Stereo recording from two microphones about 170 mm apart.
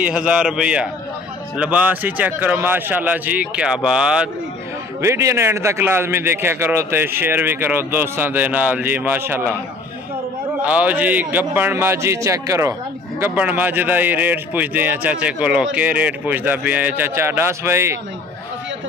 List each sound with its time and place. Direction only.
0.0 s a man's voice: 5° right (ahead or behind)
5.0 s a man's voice: 15° right (ahead or behind)
10.6 s a man's voice: 10° right (ahead or behind)